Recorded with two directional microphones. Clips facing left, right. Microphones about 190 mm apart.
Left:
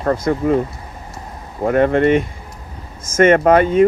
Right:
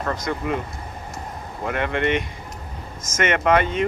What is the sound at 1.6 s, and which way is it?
Speech, 40° left (ahead or behind).